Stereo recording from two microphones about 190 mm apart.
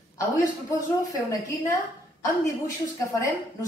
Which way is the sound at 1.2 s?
15° left (ahead or behind).